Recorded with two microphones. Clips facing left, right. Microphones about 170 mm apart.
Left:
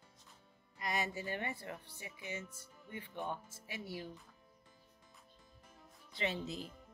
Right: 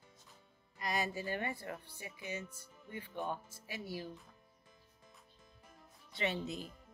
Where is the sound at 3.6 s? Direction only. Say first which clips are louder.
Right 2 dB; 25° left (ahead or behind).